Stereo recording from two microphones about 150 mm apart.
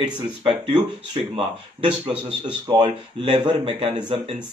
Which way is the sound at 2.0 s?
35° right (ahead or behind).